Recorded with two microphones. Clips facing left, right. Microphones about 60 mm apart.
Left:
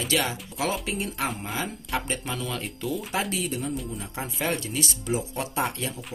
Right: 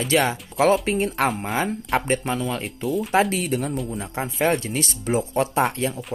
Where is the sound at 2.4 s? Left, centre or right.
Right.